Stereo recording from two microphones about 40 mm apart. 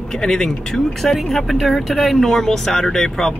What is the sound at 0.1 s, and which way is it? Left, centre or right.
Speech, centre.